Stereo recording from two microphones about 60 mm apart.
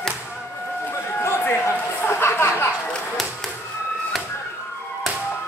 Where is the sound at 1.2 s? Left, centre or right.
Left.